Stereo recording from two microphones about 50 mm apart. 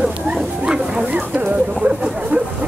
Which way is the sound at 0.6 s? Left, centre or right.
Centre.